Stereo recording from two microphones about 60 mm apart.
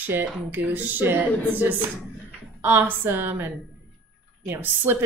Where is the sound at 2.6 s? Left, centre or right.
Right.